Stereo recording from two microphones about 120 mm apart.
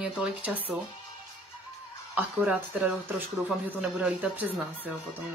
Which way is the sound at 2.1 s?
15° right (ahead or behind).